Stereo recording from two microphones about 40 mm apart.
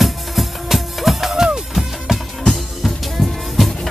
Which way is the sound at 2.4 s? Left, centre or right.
Centre.